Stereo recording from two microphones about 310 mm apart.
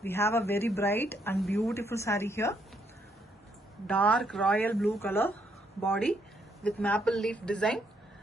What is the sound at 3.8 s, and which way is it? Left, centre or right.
A woman's voice, centre.